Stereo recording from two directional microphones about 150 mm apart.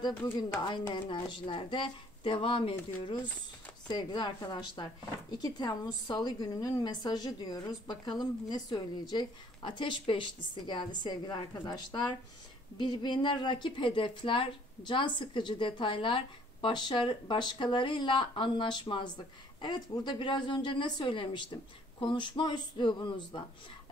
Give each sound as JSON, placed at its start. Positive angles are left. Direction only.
{"t": 0.6, "sound": "speech", "side_deg": 30}